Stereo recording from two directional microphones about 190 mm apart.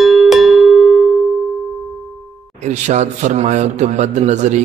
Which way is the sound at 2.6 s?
35° right (ahead or behind).